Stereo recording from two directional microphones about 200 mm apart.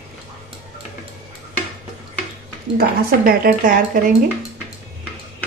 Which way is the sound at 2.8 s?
45° right (ahead or behind).